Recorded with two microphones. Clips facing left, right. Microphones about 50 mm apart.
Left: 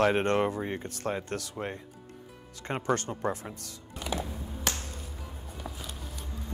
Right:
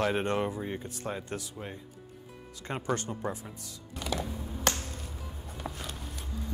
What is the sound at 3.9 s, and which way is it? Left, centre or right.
Music, left.